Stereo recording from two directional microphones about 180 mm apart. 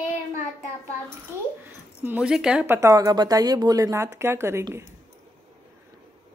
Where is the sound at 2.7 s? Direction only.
20° right (ahead or behind).